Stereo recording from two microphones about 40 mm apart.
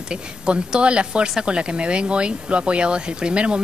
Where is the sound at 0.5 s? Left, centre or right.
Right.